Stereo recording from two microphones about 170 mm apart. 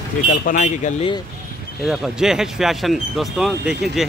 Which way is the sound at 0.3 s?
45° left (ahead or behind).